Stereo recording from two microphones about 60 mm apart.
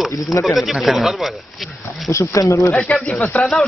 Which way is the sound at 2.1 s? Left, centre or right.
Left.